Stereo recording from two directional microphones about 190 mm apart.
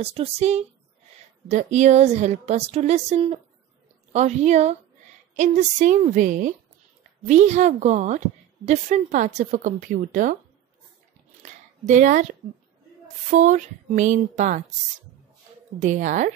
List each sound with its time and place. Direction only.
0.0 s a woman's voice: 30° right (ahead or behind)
11.8 s a woman's voice: 40° right (ahead or behind)
13.3 s a woman's voice: 40° right (ahead or behind)
15.8 s a woman's voice: 40° right (ahead or behind)